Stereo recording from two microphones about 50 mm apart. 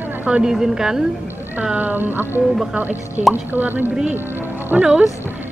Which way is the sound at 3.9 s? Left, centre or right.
Centre.